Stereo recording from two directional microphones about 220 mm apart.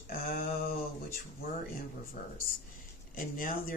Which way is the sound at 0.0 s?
40° left (ahead or behind).